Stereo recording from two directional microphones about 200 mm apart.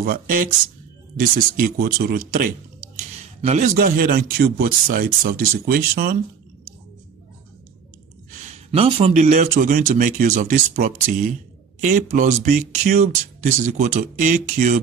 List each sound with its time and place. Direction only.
0.0 s speech: 45° right (ahead or behind)
8.7 s speech: 30° right (ahead or behind)